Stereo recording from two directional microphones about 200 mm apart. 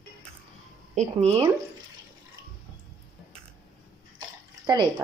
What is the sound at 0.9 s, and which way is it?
Speech, 30° right (ahead or behind).